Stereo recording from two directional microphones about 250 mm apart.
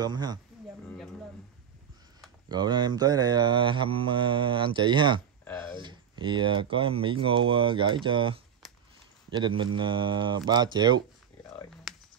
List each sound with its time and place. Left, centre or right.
0.0 s speech: centre
2.5 s mantra: centre
9.3 s speech: centre
11.9 s a sound: centre